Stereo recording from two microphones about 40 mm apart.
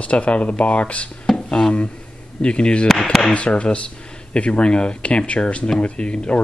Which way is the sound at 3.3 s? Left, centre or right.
Left.